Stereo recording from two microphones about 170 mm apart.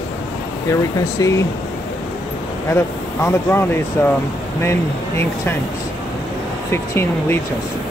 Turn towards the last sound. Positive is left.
turn(degrees=15)  # may be behind; listen again after turning